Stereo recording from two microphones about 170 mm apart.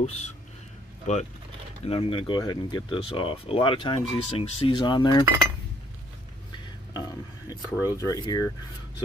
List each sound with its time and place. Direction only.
0.0 s speech: 40° left (ahead or behind)
1.9 s speech: 30° left (ahead or behind)
7.0 s a sound: 20° left (ahead or behind)
7.8 s speech: 20° left (ahead or behind)